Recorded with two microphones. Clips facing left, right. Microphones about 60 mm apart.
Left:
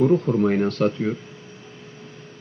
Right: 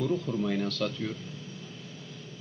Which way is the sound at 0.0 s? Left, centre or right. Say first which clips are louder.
Left 11 dB; left.